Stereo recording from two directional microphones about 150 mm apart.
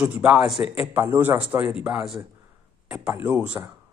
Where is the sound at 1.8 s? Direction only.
5° right (ahead or behind).